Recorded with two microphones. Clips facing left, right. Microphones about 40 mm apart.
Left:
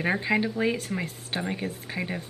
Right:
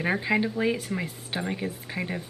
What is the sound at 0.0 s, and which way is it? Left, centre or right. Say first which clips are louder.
Speech: even; centre.